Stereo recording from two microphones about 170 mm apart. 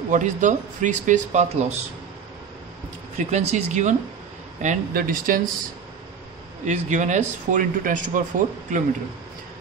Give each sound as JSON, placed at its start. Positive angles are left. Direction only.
{"t": 0.1, "sound": "speech", "side_deg": -45}
{"t": 3.2, "sound": "speech", "side_deg": -45}
{"t": 6.6, "sound": "speech", "side_deg": -45}